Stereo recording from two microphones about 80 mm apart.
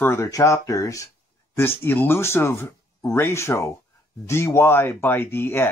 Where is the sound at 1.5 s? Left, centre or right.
Left.